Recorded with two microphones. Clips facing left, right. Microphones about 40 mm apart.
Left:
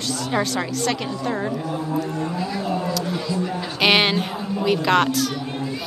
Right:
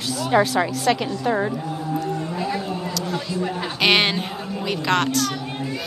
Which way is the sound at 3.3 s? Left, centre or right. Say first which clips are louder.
Even; right.